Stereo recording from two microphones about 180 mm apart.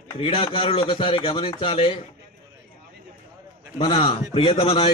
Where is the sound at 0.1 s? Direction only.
30° left (ahead or behind).